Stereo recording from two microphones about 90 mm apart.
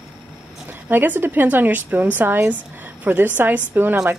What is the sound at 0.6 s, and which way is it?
Speech, 20° right (ahead or behind).